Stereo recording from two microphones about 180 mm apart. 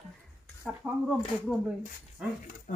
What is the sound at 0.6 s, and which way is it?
Speech, 5° left (ahead or behind).